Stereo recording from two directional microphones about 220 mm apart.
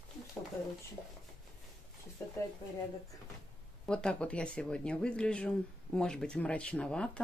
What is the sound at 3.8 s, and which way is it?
Speech, 5° left (ahead or behind).